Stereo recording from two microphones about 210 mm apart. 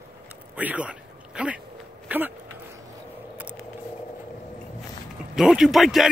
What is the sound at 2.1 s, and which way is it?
Speech, 10° right (ahead or behind).